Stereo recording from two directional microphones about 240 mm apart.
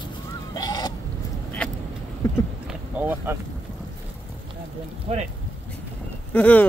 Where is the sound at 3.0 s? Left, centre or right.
Centre.